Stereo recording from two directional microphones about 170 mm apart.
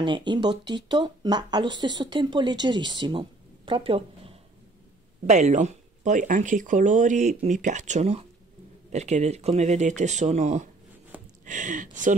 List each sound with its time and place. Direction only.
0.0 s speech: 25° right (ahead or behind); by 12.2 s 50° right (ahead or behind)